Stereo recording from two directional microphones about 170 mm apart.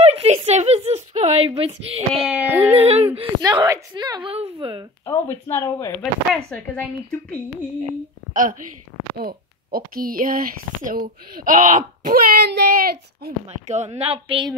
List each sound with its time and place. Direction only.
0.0 s a sound: 40° right (ahead or behind)
2.2 s speech: 10° right (ahead or behind)
2.7 s a sound: 35° right (ahead or behind)
3.2 s a woman's voice: 30° right (ahead or behind)
5.0 s speech: 15° left (ahead or behind)
6.3 s a woman's voice: centre (ahead or behind)
8.3 s a woman's voice: 50° right (ahead or behind)
9.1 s speech: 60° right (ahead or behind)
13.7 s speech: 40° right (ahead or behind)